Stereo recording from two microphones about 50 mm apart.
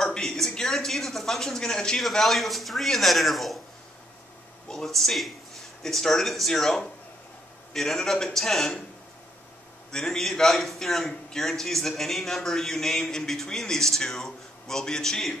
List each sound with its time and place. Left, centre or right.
0.0 s speech: centre
2.0 s speech: centre
4.6 s a man's voice: centre
9.8 s a man's voice: centre